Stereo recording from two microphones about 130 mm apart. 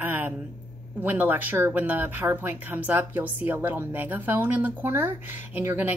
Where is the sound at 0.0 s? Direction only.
15° right (ahead or behind).